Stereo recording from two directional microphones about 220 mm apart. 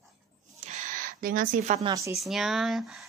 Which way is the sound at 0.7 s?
40° right (ahead or behind).